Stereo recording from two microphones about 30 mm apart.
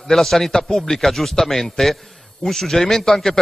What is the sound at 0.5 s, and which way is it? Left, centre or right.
A man's voice, left.